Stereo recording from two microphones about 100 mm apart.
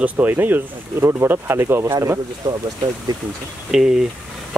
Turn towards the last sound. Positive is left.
turn(degrees=-5)  # may be behind; listen again after turning